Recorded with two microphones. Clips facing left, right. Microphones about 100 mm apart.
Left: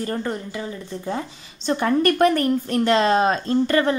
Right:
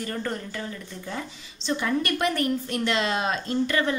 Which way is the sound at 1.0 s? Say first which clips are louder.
Left 7 dB; 35° left (ahead or behind).